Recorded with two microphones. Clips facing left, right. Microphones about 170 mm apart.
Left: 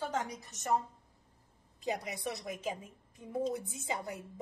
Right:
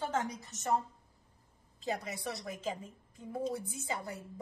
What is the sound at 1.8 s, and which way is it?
A woman's voice, 15° left (ahead or behind).